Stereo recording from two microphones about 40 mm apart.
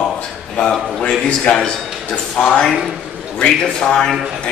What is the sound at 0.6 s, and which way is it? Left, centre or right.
Speech, left.